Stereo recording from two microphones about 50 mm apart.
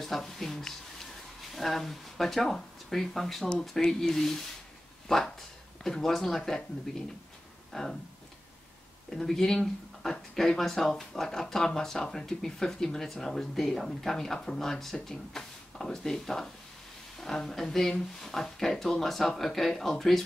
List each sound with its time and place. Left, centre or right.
0.0 s speech: centre
7.7 s speech: centre
9.1 s speech: centre